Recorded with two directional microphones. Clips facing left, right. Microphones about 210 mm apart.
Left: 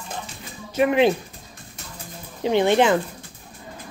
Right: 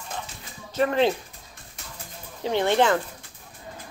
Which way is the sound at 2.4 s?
20° left (ahead or behind).